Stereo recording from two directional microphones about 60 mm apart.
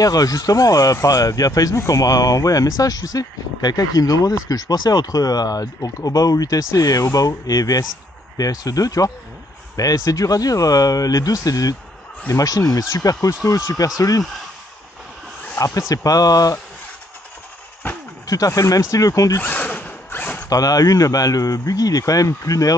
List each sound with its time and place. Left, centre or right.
0.0 s speech: left
0.5 s speech: left
12.3 s speech: left
15.6 s speech: left
15.9 s speech: left
17.8 s speech: left
18.2 s speech: left
19.3 s zipper: left
20.4 s speech: left